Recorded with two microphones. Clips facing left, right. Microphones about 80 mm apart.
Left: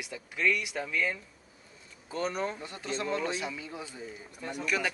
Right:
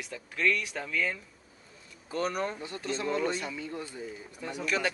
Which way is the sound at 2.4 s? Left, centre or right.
Centre.